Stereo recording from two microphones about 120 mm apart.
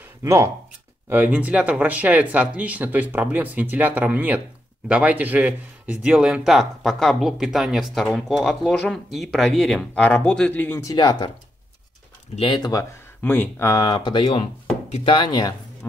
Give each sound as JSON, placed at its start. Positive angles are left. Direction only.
{"t": 0.2, "sound": "speech", "side_deg": -25}
{"t": 1.0, "sound": "a man's voice", "side_deg": -15}
{"t": 10.8, "sound": "speech", "side_deg": 30}
{"t": 12.4, "sound": "speech", "side_deg": 40}
{"t": 13.2, "sound": "speech", "side_deg": 15}
{"t": 13.9, "sound": "speech", "side_deg": 40}
{"t": 15.8, "sound": "speech", "side_deg": 20}